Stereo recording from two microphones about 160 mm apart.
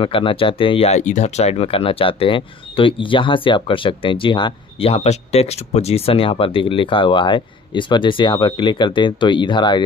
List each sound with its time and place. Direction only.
0.0 s speech: 35° left (ahead or behind)